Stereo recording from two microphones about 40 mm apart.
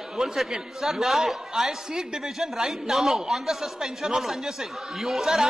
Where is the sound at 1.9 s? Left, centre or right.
Centre.